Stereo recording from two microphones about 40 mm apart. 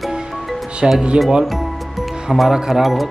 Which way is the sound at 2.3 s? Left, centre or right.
Centre.